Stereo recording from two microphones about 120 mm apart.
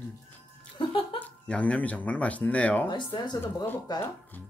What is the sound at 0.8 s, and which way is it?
Speech, 45° left (ahead or behind).